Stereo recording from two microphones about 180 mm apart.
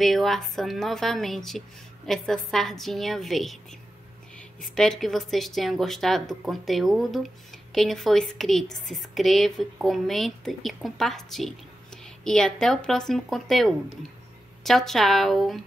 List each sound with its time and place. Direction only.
0.0 s a woman's voice: centre (ahead or behind)
4.6 s a woman's voice: 5° left (ahead or behind)